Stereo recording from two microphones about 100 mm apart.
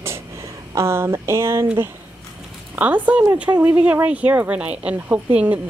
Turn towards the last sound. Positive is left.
turn(degrees=-15)  # may be behind; listen again after turning